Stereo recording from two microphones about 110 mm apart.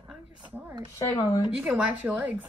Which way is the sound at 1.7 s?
15° right (ahead or behind).